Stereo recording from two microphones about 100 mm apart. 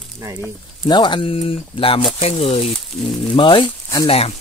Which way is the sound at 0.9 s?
50° left (ahead or behind).